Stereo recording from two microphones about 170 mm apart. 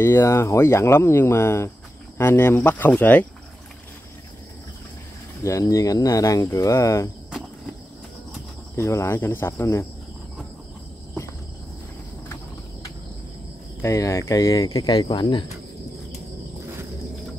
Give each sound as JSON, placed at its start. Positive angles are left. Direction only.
{"t": 0.0, "sound": "speech", "side_deg": 15}
{"t": 5.4, "sound": "speech", "side_deg": 20}
{"t": 8.7, "sound": "speech", "side_deg": 15}
{"t": 13.8, "sound": "speech", "side_deg": 20}